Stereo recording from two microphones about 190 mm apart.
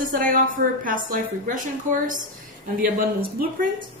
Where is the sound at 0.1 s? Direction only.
45° right (ahead or behind).